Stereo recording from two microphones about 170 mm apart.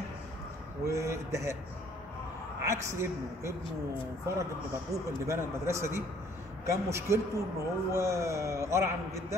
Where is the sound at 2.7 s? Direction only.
15° right (ahead or behind).